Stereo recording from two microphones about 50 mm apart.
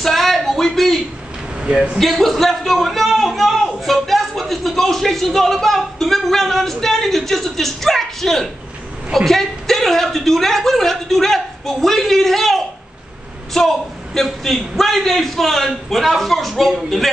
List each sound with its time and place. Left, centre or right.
0.0 s a sound: centre
1.6 s a man's voice: centre
2.0 s a man's voice: centre